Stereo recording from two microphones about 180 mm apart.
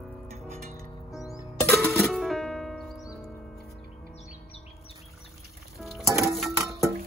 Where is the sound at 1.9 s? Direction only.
Centre (ahead or behind).